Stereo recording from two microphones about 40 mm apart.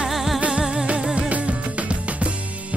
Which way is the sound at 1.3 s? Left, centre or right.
Right.